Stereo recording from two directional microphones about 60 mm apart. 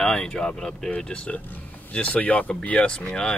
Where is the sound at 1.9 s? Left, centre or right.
Left.